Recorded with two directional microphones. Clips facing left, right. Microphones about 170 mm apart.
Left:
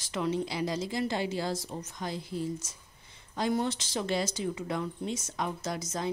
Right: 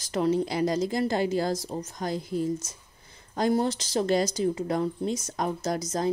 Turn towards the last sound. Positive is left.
turn(degrees=-40)  # may be behind; listen again after turning